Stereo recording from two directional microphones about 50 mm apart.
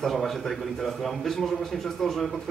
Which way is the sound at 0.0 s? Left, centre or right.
Centre.